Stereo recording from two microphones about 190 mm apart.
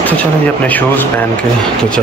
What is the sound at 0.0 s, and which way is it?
Speech, 10° left (ahead or behind).